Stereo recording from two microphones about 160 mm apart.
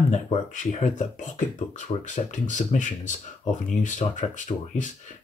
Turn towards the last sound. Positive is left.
turn(degrees=50)  # may be behind; listen again after turning